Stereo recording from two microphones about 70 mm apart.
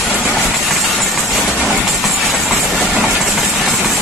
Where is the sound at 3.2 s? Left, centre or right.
Centre.